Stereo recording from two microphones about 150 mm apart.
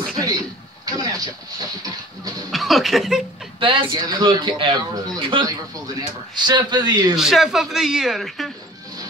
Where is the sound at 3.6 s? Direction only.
35° right (ahead or behind).